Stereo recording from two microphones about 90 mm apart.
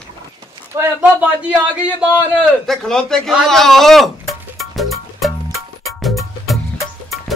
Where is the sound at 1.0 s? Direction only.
15° right (ahead or behind).